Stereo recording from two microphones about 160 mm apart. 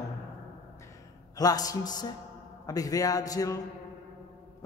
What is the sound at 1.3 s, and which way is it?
A man's voice, 25° left (ahead or behind).